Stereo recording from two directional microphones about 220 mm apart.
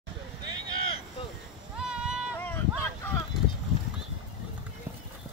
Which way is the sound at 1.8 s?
5° right (ahead or behind).